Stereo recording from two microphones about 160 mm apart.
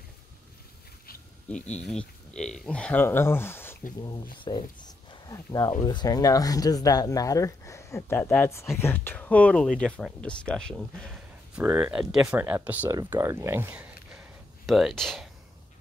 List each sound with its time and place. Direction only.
1.5 s speech: 5° left (ahead or behind)
4.4 s speech: 30° left (ahead or behind); by 15.2 s centre (ahead or behind)